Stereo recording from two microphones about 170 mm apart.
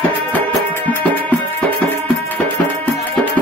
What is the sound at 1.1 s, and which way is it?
Music, 10° left (ahead or behind).